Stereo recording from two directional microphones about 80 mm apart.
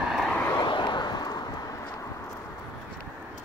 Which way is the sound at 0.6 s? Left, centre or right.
Left.